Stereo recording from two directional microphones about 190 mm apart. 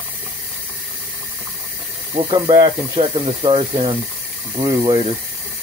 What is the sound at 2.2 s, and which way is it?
Speech, 20° right (ahead or behind).